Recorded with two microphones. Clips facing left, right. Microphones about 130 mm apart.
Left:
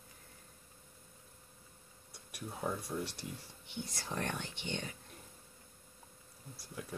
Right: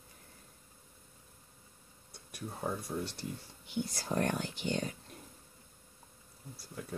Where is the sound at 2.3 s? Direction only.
5° left (ahead or behind).